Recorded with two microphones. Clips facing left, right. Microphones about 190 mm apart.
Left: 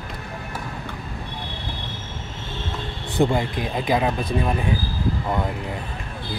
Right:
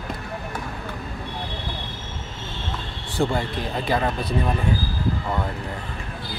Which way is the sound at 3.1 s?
15° left (ahead or behind).